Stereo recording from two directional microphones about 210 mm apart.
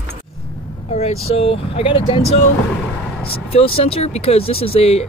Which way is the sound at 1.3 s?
25° left (ahead or behind).